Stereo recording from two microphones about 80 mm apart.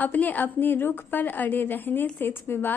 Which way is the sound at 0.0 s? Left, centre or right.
Left.